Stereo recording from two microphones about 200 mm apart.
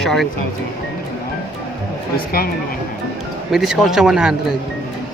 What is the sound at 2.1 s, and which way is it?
Speech, 50° left (ahead or behind).